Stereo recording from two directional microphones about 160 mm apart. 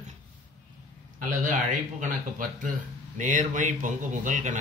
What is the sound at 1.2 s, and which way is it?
Speech, 50° right (ahead or behind).